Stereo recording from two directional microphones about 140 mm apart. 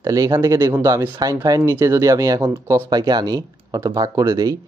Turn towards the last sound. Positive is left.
turn(degrees=-25)  # may be behind; listen again after turning